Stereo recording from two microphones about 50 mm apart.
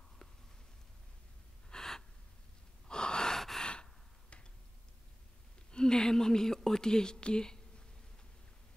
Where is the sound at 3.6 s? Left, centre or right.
Centre.